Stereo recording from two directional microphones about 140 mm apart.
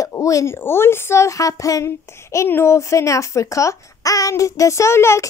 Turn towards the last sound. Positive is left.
turn(degrees=20)  # may be behind; listen again after turning